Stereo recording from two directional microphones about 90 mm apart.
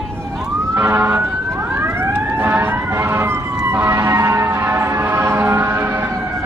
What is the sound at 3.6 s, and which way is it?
Vehicle, 20° right (ahead or behind).